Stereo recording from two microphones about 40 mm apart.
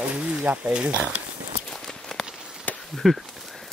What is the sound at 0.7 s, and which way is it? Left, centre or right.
Speech, right.